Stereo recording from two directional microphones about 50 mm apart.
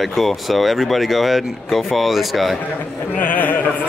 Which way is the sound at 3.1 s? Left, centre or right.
Left.